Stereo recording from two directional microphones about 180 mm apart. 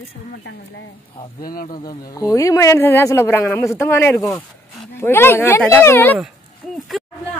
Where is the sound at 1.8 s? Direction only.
20° left (ahead or behind).